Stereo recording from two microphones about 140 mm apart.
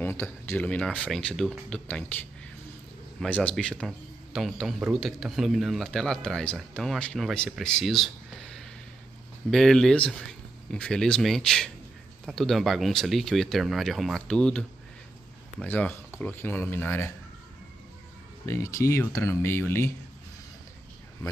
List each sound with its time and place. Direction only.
0.0 s speech: 15° left (ahead or behind)
15.6 s speech: 10° left (ahead or behind)
18.4 s speech: 20° left (ahead or behind)